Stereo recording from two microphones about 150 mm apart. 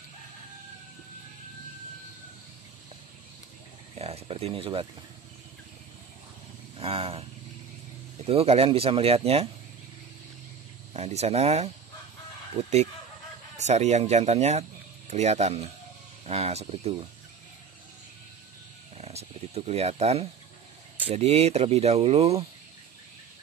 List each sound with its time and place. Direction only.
4.0 s speech: 45° right (ahead or behind)
6.8 s vehicle: 40° right (ahead or behind)
8.3 s speech: 40° right (ahead or behind)
10.9 s speech: 45° right (ahead or behind)
18.9 s wild animals: 45° right (ahead or behind)
21.0 s speech: 45° right (ahead or behind)